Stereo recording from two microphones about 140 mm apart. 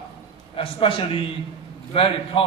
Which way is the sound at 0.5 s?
40° left (ahead or behind).